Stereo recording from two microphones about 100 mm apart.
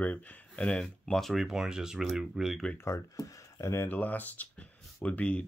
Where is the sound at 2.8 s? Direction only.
35° left (ahead or behind).